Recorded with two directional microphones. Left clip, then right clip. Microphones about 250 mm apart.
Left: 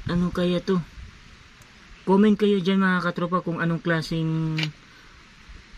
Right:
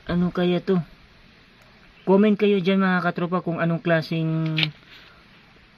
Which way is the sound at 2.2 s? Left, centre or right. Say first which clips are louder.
Right 1 dB; centre.